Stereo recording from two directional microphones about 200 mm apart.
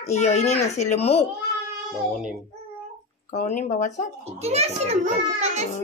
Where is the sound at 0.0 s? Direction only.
35° left (ahead or behind).